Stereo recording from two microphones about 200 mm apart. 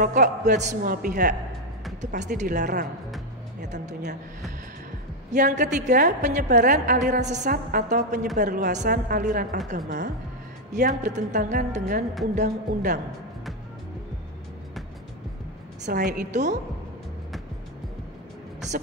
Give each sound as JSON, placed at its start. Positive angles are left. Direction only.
{"t": 0.0, "sound": "a woman's voice", "side_deg": -40}
{"t": 2.6, "sound": "a woman's voice", "side_deg": -50}
{"t": 3.6, "sound": "a woman's voice", "side_deg": -35}
{"t": 5.3, "sound": "a woman's voice", "side_deg": -40}
{"t": 10.7, "sound": "a woman's voice", "side_deg": -40}
{"t": 15.8, "sound": "a woman's voice", "side_deg": -45}